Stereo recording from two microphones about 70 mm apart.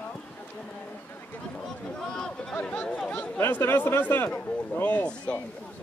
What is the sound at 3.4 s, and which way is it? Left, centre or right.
Speech, left.